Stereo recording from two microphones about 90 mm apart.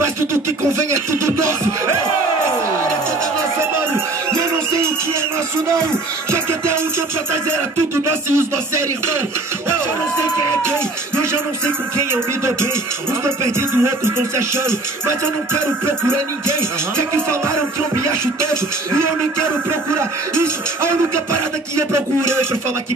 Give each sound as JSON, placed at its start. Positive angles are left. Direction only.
{"t": 1.1, "sound": "speech", "side_deg": -30}
{"t": 3.5, "sound": "music", "side_deg": -30}
{"t": 13.2, "sound": "music", "side_deg": -30}
{"t": 19.7, "sound": "music", "side_deg": -30}
{"t": 21.9, "sound": "music", "side_deg": -30}